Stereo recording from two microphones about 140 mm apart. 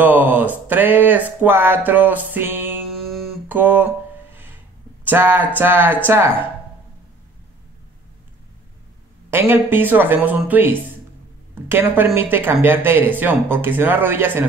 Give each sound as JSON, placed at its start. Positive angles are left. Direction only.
{"t": 0.0, "sound": "speech", "side_deg": -15}
{"t": 2.9, "sound": "music", "side_deg": 0}
{"t": 3.4, "sound": "guitar", "side_deg": -15}
{"t": 5.0, "sound": "speech", "side_deg": -15}
{"t": 9.3, "sound": "speech", "side_deg": -15}